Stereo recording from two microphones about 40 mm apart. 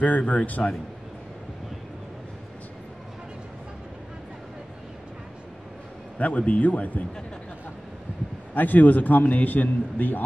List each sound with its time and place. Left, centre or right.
0.0 s speech: left
6.1 s speech: left
8.5 s a man's voice: left